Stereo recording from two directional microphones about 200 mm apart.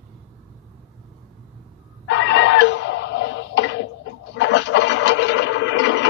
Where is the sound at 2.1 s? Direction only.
70° left (ahead or behind).